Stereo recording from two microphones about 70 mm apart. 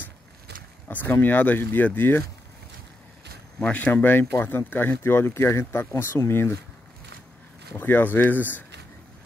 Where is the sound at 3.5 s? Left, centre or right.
Centre; by 6.6 s left.